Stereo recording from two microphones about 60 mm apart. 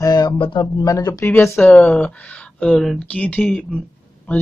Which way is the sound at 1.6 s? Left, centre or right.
Left.